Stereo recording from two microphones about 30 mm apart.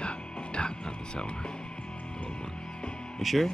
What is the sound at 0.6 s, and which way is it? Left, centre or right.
Music, left.